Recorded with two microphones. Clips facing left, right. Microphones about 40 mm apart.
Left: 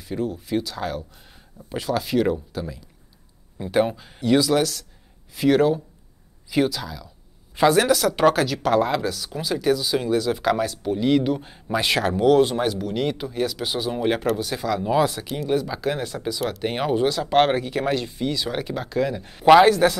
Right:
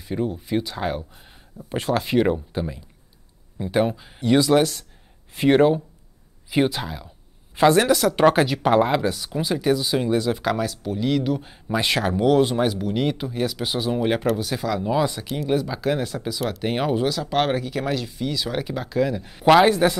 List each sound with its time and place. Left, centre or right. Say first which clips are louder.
0.0 s speech: right 1 dB; centre
3.5 s speech: even; centre; by 7.1 s right
7.5 s speech: right 1 dB; centre
8.2 s speech: right 2 dB; centre
10.3 s speech: left 2 dB; centre
19.7 s speech: left 1 dB; centre